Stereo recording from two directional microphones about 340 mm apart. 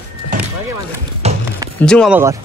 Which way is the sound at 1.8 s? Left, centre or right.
Centre.